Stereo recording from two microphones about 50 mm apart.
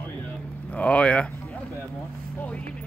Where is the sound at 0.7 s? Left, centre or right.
Left.